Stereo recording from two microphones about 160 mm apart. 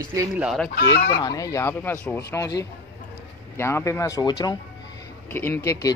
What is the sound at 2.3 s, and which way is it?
Speech, 20° left (ahead or behind).